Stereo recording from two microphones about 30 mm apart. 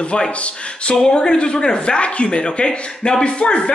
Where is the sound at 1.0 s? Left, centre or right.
Left.